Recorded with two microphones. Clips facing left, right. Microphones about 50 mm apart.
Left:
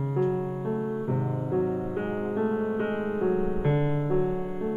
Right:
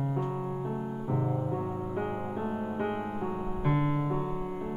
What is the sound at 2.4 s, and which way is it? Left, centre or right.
Music, centre.